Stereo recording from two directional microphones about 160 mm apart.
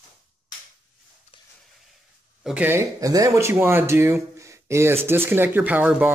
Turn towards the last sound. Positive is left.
turn(degrees=-10)  # may be behind; listen again after turning